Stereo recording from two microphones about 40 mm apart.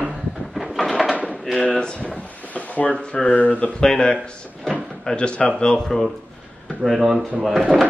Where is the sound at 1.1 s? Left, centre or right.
Right.